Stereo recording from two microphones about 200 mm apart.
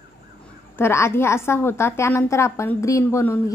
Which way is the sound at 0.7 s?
10° left (ahead or behind).